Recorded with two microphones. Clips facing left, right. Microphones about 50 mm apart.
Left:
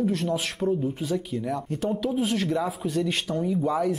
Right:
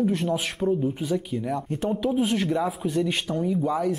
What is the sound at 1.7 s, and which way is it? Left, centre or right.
Speech, centre.